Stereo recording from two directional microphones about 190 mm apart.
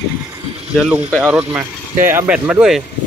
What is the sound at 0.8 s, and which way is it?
Speech, 5° right (ahead or behind).